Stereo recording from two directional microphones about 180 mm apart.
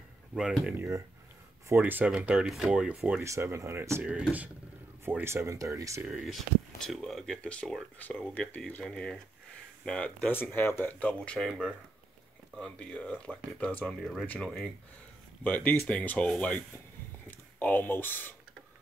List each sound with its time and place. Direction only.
0.3 s speech: 5° right (ahead or behind)
6.0 s speech: centre (ahead or behind)